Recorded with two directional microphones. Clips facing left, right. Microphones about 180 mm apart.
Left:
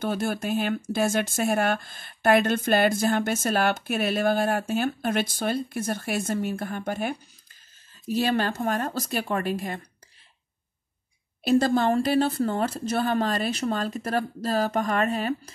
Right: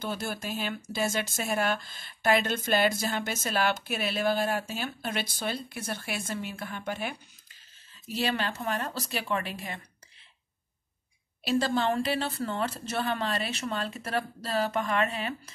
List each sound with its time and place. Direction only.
0.0 s a woman's voice: 55° left (ahead or behind)
11.4 s a woman's voice: 45° left (ahead or behind)